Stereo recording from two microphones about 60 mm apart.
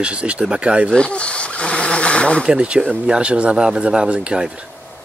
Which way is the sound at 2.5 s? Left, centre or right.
Centre.